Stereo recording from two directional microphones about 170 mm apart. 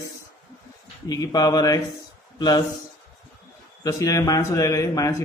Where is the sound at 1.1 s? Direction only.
20° left (ahead or behind).